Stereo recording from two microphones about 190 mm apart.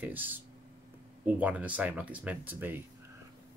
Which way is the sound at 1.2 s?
10° right (ahead or behind).